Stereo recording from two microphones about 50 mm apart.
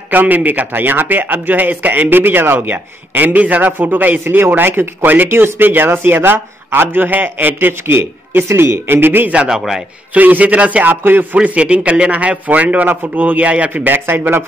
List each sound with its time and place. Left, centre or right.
0.1 s a man's voice: right
2.7 s a man's voice: right
8.8 s speech: right
10.1 s a man's voice: right
10.9 s speech: right
11.3 s a man's voice: right
13.8 s speech: right